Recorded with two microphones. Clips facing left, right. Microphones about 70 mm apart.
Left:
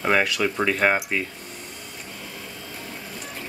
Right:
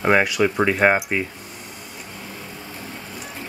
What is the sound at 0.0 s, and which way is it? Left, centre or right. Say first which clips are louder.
Speech: right 4 dB; centre.